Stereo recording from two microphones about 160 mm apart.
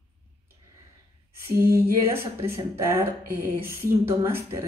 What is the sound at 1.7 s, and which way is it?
A woman's voice, 15° right (ahead or behind).